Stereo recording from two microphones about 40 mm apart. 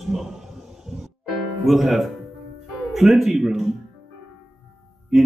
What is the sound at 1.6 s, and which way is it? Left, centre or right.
Speech, centre.